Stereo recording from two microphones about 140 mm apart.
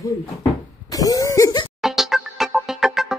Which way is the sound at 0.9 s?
25° left (ahead or behind).